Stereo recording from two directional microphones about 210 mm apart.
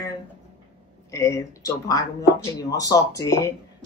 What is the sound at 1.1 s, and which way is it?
Speech, 15° left (ahead or behind).